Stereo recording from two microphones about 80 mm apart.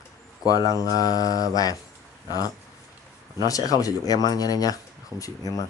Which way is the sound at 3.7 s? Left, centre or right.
Left.